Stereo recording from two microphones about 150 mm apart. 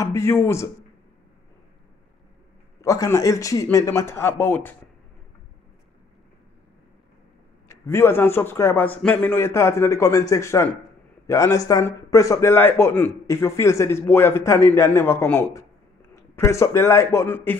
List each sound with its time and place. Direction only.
0.0 s a man's voice: 20° left (ahead or behind)
2.8 s a man's voice: 20° left (ahead or behind)
7.6 s a man's voice: 20° left (ahead or behind)